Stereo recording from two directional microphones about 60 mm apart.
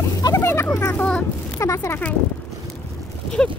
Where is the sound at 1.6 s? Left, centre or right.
Left.